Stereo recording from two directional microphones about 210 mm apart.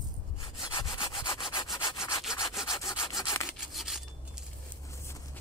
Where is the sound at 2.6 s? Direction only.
15° left (ahead or behind).